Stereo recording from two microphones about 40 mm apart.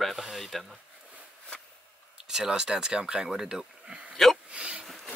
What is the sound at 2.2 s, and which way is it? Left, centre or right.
Speech, centre.